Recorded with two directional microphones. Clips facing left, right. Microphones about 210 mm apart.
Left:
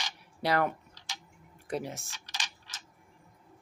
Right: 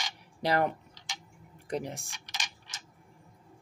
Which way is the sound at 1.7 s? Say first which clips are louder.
Right 1 dB; 15° right (ahead or behind).